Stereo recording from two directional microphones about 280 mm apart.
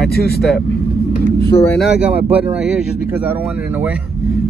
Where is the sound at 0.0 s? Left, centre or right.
Left.